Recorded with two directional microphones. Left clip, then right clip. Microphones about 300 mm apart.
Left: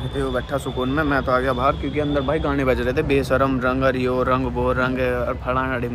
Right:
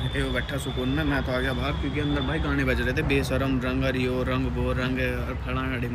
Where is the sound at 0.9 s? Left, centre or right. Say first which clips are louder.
Left 9 dB; left.